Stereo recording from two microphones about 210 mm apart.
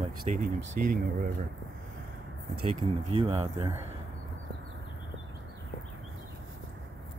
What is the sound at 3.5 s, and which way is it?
Speech, 15° right (ahead or behind).